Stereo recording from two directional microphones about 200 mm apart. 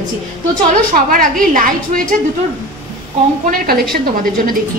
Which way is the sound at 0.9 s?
45° right (ahead or behind).